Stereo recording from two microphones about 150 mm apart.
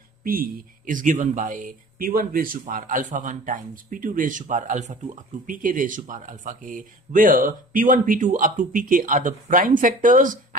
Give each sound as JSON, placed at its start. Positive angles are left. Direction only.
{"t": 0.2, "sound": "speech", "side_deg": -70}